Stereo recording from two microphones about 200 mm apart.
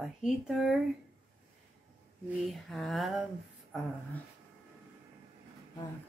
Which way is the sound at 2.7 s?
Centre (ahead or behind).